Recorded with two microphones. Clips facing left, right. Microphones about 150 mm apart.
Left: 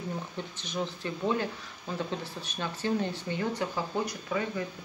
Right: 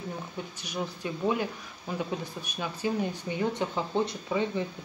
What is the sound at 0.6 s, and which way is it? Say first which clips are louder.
Speech: left 1 dB; 10° right (ahead or behind).